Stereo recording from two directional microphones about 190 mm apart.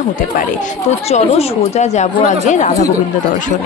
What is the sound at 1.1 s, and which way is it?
Speech, 35° left (ahead or behind).